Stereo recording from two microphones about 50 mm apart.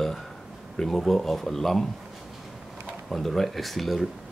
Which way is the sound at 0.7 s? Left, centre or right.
Centre.